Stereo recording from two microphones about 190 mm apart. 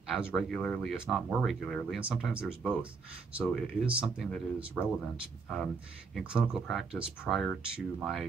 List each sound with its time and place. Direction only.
0.1 s speech: 5° right (ahead or behind)